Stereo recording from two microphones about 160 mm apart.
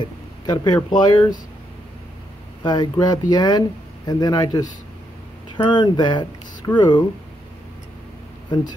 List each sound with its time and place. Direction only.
0.0 s a sound: 25° left (ahead or behind)
0.9 s speech: 30° left (ahead or behind)
2.6 s speech: 25° left (ahead or behind)
5.7 s speech: 30° left (ahead or behind)